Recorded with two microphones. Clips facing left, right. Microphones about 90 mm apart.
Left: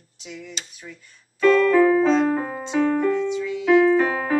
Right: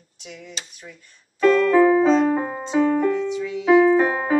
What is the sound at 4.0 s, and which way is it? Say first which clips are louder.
Keyboard: right 1 dB; 15° right (ahead or behind).